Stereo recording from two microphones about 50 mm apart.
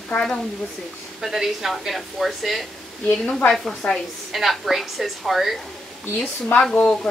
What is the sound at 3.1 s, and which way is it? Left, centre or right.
Speech, left.